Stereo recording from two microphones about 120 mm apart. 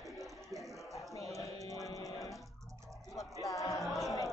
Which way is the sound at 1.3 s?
25° left (ahead or behind).